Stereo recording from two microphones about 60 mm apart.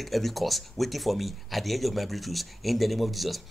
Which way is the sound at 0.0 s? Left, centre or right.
Centre.